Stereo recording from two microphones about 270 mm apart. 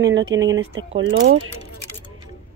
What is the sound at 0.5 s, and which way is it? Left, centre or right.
Music, right.